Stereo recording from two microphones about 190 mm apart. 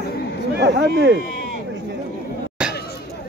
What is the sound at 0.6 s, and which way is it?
Speech, 65° right (ahead or behind).